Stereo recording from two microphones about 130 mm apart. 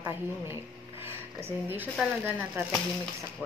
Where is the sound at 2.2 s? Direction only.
15° right (ahead or behind).